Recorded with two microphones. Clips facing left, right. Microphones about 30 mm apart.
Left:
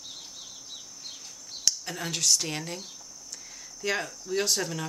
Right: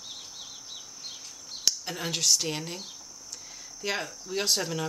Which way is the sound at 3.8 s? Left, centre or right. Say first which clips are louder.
Left 2 dB; centre.